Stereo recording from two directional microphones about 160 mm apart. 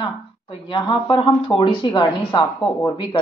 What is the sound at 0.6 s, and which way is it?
Speech, 30° left (ahead or behind).